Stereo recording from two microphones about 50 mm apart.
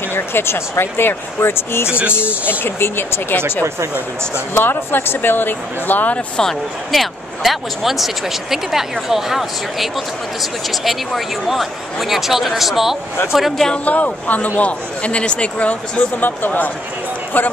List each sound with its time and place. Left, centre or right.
0.1 s speech: left
1.9 s speech: right
2.1 s speech: left
4.6 s speech: left
6.9 s speech: centre
13.8 s speech: left